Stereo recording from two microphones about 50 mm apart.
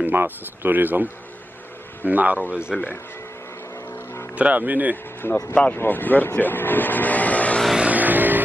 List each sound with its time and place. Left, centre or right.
0.0 s speech: right
4.4 s speech: right
5.3 s speech: left
7.8 s vehicle: right